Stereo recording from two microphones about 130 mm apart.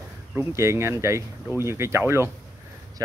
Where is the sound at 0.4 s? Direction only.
20° right (ahead or behind).